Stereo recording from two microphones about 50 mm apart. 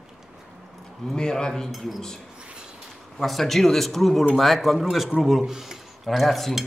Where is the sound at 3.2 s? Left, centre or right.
Centre.